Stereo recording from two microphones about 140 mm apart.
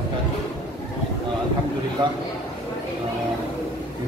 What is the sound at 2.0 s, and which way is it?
Speech, 30° right (ahead or behind).